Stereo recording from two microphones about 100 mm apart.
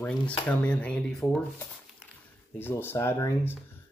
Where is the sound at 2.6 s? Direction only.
20° left (ahead or behind).